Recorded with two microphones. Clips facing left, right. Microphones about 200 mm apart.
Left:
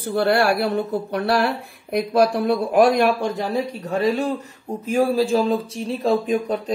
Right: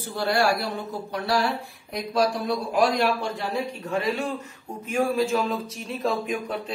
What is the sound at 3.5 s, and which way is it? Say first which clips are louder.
Speech: left 4 dB; 35° left (ahead or behind).